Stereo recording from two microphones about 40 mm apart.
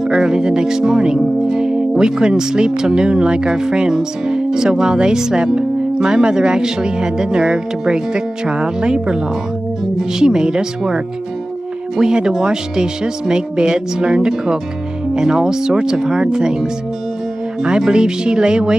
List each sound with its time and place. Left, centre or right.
0.2 s speech: centre
12.0 s speech: centre
17.6 s speech: right